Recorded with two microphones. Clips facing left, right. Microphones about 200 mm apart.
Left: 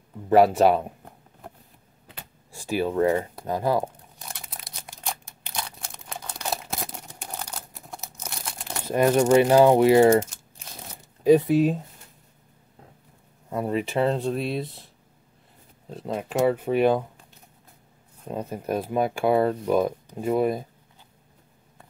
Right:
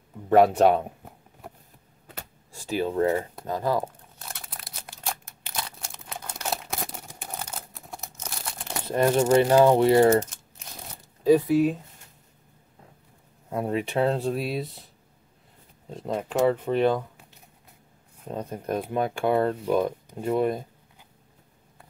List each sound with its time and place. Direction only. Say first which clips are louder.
0.3 s a sound: left 1 dB; 5° left (ahead or behind)
2.6 s speech: left 2 dB; 10° left (ahead or behind)
3.4 s crumpling: left 2 dB; 15° left (ahead or behind)
4.4 s scissors: even; centre (ahead or behind)
7.1 s crumpling: even; 5° right (ahead or behind)
8.9 s speech: left 2 dB; 10° left (ahead or behind)
11.2 s speech: left 2 dB; 20° left (ahead or behind)
13.5 s speech: left 1 dB; centre (ahead or behind)
15.9 s speech: even; 5° left (ahead or behind)
18.3 s speech: left 1 dB; 5° left (ahead or behind)